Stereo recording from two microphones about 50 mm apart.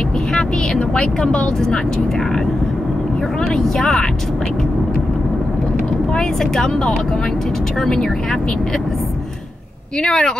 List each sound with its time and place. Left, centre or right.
0.7 s speech: left
3.5 s speech: centre
6.1 s speech: centre
10.0 s speech: centre